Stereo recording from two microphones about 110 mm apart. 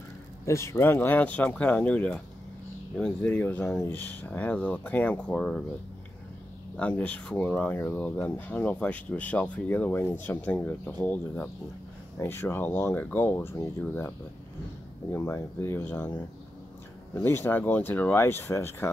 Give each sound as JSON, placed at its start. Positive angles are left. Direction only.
{"t": 0.5, "sound": "speech", "side_deg": 25}
{"t": 6.8, "sound": "speech", "side_deg": 10}
{"t": 12.2, "sound": "speech", "side_deg": 20}